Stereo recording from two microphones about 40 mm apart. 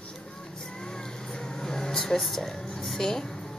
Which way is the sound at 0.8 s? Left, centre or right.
Centre.